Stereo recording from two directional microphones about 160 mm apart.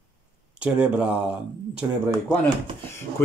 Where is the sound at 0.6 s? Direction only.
5° right (ahead or behind).